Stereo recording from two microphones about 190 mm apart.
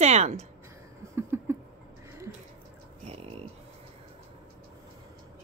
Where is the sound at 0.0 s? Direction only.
35° right (ahead or behind).